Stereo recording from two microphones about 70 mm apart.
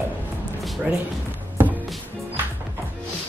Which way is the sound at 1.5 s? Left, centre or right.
Right.